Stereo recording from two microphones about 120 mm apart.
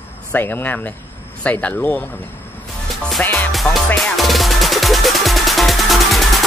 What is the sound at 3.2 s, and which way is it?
Music, 15° left (ahead or behind).